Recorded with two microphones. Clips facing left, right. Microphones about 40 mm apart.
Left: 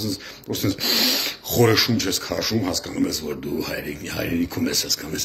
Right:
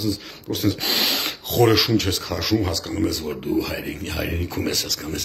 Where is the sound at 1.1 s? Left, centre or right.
Right.